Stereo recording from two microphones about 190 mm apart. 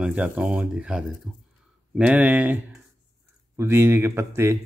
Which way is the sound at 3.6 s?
10° right (ahead or behind).